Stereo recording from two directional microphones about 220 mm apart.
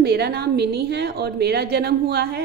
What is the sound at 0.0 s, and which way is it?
A woman's voice, 45° right (ahead or behind).